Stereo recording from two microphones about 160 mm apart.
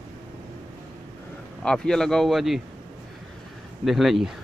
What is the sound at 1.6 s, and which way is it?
Speech, 5° left (ahead or behind).